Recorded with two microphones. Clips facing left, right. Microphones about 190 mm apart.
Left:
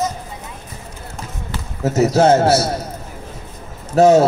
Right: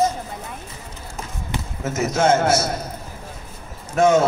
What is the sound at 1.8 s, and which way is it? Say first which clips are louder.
Speech: left 7 dB; 35° left (ahead or behind).